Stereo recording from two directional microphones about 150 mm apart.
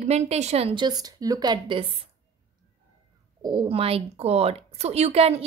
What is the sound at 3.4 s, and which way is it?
A woman's voice, 35° right (ahead or behind).